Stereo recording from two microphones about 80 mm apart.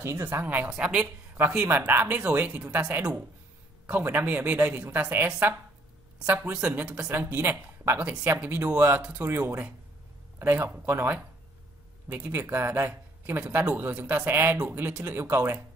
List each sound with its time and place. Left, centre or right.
0.0 s speech: right
0.7 s speech: centre
3.9 s speech: right